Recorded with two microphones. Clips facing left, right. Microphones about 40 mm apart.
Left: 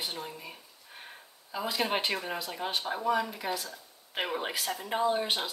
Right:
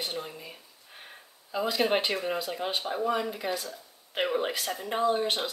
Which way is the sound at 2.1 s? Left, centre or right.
Centre.